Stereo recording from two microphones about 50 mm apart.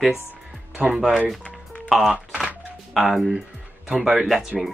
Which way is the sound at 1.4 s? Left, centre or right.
Left.